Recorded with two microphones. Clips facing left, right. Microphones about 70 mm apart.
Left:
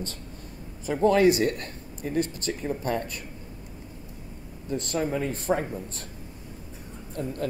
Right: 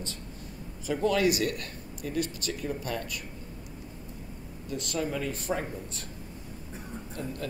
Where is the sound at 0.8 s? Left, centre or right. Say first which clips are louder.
Left 6 dB; left.